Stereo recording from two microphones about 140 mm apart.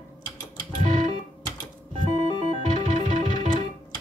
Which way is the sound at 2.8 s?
65° right (ahead or behind).